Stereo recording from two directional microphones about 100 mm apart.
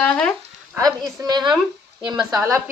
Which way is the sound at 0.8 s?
40° right (ahead or behind).